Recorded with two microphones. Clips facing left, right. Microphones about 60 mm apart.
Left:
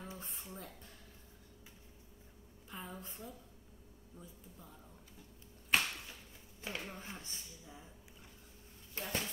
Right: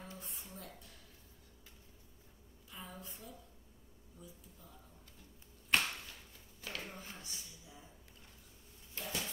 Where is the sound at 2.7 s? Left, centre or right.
Left.